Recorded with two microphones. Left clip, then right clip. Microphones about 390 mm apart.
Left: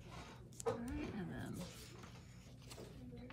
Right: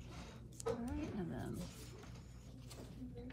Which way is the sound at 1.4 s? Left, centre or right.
Centre.